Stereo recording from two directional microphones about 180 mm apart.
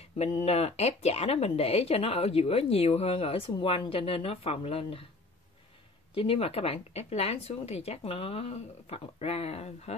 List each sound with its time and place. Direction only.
0.0 s speech: 35° left (ahead or behind)
6.1 s speech: 30° left (ahead or behind)